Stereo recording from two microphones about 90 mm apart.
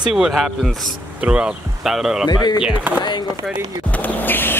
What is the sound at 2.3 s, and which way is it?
Speech, 50° left (ahead or behind).